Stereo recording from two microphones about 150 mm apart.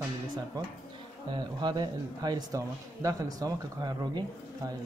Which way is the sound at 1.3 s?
30° right (ahead or behind).